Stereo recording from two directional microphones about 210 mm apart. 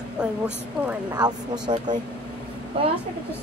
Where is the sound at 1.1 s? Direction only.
20° right (ahead or behind).